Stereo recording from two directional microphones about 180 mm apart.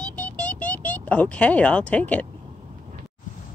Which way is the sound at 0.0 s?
5° left (ahead or behind).